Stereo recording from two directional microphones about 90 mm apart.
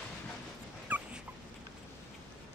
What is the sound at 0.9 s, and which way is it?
Dog, 15° right (ahead or behind).